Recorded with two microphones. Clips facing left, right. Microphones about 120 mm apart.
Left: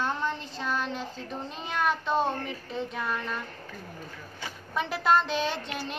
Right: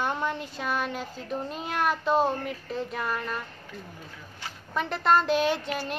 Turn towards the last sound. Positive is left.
turn(degrees=-5)  # may be behind; listen again after turning